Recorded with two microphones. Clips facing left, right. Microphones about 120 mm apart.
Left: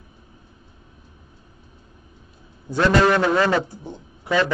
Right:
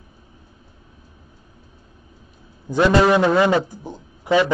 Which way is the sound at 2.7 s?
15° right (ahead or behind).